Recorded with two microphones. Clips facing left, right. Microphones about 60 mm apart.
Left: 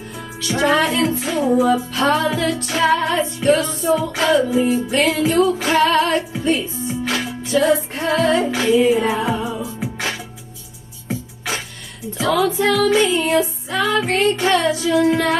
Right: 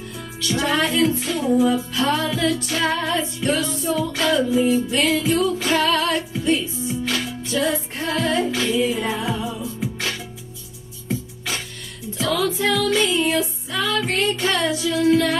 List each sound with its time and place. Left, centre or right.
0.6 s music: left
1.6 s music: left
4.1 s music: centre